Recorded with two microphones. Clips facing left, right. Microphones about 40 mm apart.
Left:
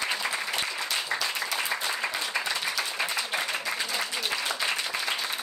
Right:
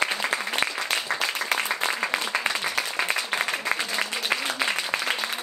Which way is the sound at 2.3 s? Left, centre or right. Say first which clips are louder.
Right 3 dB; right.